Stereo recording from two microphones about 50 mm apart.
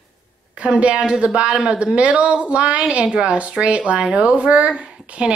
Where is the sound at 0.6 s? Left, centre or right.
Right.